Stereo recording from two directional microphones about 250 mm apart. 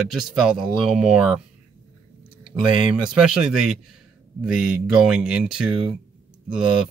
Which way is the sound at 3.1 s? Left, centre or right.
Centre.